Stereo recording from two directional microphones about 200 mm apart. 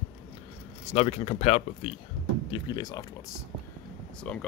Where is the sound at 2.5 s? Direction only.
20° left (ahead or behind).